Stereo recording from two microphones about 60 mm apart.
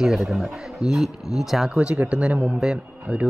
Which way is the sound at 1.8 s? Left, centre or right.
Centre.